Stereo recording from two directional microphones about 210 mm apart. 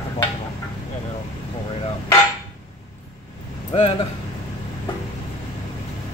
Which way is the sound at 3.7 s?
25° left (ahead or behind).